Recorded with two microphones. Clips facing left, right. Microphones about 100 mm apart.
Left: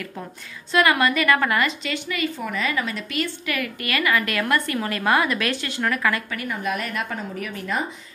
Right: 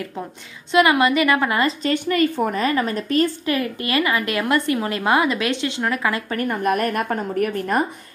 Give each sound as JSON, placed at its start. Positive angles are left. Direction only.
{"t": 0.7, "sound": "a woman's voice", "side_deg": -20}
{"t": 1.9, "sound": "a woman's voice", "side_deg": -45}
{"t": 6.3, "sound": "a woman's voice", "side_deg": -50}